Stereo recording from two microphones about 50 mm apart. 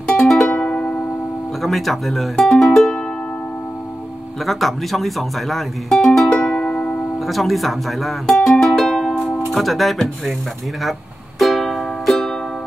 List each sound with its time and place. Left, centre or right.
0.2 s music: centre
0.5 s music: left
1.6 s speech: centre
4.5 s speech: centre
5.9 s music: centre
6.6 s music: left
7.2 s speech: centre
8.5 s music: centre
9.5 s speech: centre
10.8 s music: centre